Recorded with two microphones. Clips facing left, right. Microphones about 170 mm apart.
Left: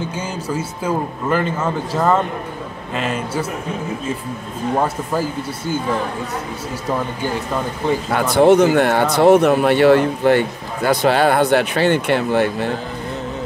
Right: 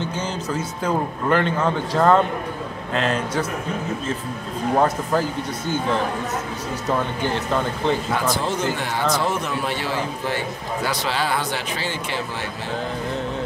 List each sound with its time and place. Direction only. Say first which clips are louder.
0.1 s speech: left 2 dB; 10° left (ahead or behind)
4.7 s speech: right 1 dB; 10° left (ahead or behind)
8.1 s speech: left 10 dB; 65° left (ahead or behind)